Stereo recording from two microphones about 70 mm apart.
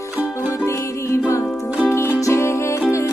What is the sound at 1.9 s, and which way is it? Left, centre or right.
Music, left.